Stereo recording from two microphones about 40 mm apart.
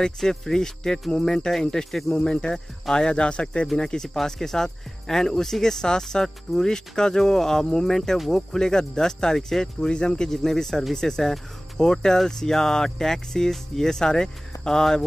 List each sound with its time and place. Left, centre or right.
0.0 s speech: centre
2.1 s speech: left